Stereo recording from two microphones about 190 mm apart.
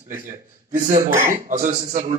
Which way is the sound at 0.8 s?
45° right (ahead or behind).